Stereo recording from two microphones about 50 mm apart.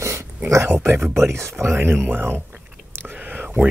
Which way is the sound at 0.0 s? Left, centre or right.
Right.